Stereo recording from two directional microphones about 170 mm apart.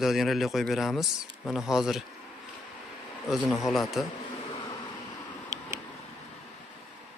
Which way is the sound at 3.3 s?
Centre (ahead or behind).